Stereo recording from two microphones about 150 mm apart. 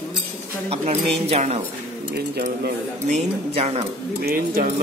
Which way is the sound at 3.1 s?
45° right (ahead or behind).